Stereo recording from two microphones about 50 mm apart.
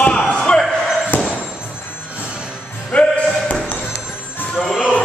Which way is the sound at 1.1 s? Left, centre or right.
Left.